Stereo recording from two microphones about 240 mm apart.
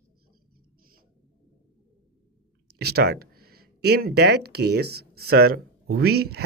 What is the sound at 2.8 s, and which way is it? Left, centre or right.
Speech, right.